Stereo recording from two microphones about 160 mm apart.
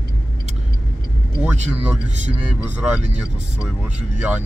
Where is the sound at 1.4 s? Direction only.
10° right (ahead or behind).